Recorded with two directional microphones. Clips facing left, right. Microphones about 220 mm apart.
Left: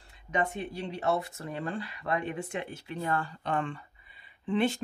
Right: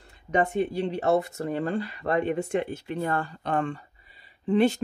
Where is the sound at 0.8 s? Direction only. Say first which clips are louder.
Right 6 dB; 50° right (ahead or behind).